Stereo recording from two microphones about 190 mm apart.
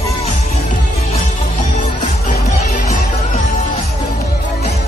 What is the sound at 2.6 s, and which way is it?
Music, 35° left (ahead or behind).